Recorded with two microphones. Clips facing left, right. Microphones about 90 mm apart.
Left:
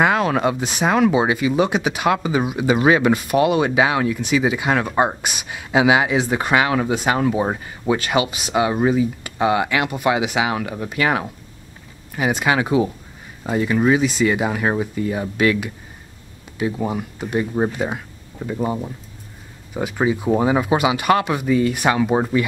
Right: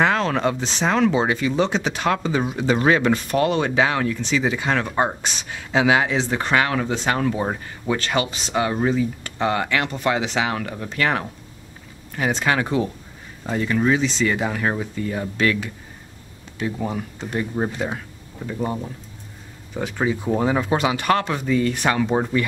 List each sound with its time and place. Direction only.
0.0 s speech: 10° left (ahead or behind)